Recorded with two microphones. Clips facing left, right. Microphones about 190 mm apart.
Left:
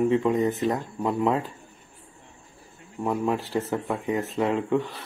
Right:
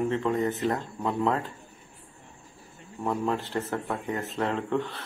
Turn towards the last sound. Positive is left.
turn(degrees=5)  # may be behind; listen again after turning